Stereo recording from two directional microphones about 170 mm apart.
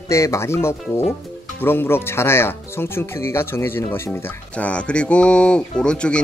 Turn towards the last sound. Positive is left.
turn(degrees=5)  # may be behind; listen again after turning